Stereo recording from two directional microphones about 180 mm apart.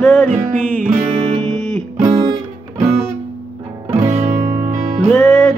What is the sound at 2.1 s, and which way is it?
Music, 20° right (ahead or behind).